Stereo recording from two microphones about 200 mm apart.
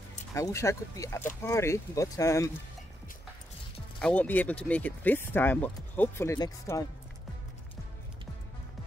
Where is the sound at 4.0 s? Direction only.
5° left (ahead or behind).